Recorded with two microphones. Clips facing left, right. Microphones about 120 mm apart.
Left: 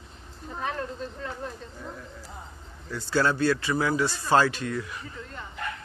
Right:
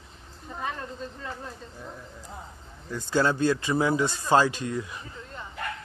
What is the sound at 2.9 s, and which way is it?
A man's voice, 20° right (ahead or behind).